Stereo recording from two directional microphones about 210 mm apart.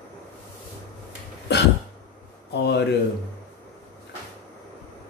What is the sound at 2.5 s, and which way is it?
Speech, 55° left (ahead or behind).